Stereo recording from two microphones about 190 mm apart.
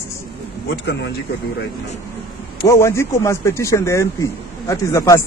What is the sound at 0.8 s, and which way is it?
Speech, 65° left (ahead or behind).